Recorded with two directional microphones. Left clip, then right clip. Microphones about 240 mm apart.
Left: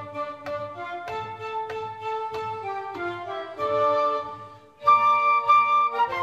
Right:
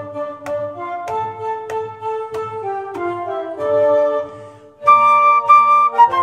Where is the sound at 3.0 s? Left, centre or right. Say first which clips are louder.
Right 9 dB; left.